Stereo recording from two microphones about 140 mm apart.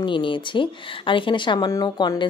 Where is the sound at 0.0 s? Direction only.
35° left (ahead or behind).